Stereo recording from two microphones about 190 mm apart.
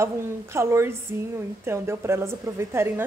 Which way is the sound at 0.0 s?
15° right (ahead or behind).